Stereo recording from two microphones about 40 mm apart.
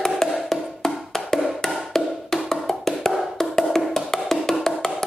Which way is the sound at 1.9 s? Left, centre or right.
Centre.